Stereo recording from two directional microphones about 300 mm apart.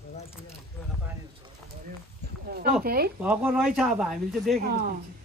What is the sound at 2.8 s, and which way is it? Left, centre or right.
Speech, right.